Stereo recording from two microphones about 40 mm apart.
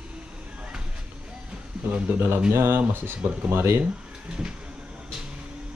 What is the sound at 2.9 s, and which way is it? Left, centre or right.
Speech, right.